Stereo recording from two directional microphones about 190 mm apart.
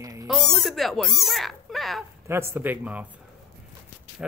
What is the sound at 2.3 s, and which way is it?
Speech, 15° right (ahead or behind).